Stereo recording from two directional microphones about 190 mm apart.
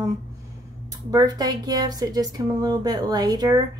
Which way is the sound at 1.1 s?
20° right (ahead or behind).